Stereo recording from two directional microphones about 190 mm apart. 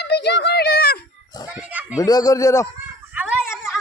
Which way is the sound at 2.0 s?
20° left (ahead or behind).